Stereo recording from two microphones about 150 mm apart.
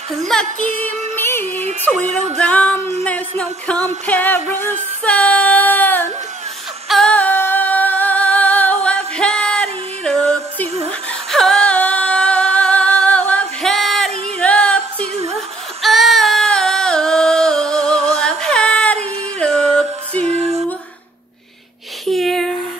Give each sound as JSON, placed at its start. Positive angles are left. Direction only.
{"t": 0.3, "sound": "music", "side_deg": 5}
{"t": 1.6, "sound": "music", "side_deg": -50}
{"t": 2.3, "sound": "music", "side_deg": 10}
{"t": 5.0, "sound": "female singing", "side_deg": 10}
{"t": 6.9, "sound": "singing", "side_deg": 5}
{"t": 14.4, "sound": "music", "side_deg": 5}
{"t": 22.0, "sound": "a sound", "side_deg": 0}